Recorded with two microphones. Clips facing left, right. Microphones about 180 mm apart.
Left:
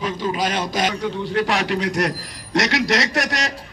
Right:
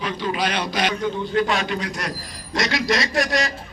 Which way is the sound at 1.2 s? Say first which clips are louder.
Left 2 dB; 70° left (ahead or behind).